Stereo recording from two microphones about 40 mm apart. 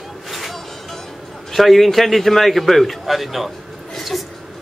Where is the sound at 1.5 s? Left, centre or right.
Centre.